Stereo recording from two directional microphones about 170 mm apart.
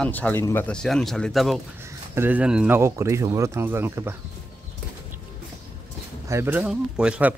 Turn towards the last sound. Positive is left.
turn(degrees=-5)  # may be behind; listen again after turning